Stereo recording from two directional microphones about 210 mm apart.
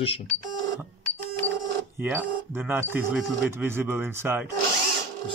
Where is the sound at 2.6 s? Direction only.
10° right (ahead or behind).